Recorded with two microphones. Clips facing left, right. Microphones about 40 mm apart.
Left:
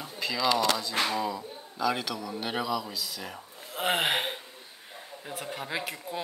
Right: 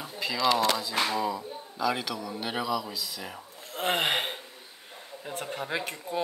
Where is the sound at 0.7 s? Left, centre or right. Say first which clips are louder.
Right 1 dB; centre.